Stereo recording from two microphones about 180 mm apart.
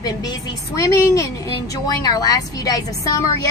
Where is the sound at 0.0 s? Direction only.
20° left (ahead or behind).